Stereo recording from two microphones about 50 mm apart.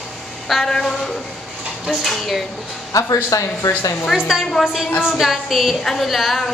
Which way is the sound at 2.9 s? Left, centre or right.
Left.